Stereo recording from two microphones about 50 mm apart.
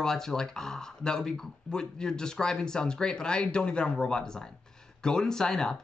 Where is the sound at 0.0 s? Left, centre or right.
Centre.